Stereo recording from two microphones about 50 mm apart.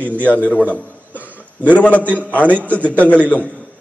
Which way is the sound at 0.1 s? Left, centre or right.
Left.